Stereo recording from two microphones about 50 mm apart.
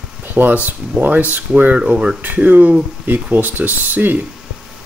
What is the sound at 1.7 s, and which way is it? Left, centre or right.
Speech, right.